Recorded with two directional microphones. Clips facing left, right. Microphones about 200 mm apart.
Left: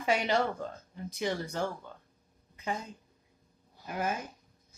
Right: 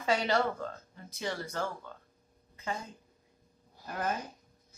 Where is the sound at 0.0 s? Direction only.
15° left (ahead or behind).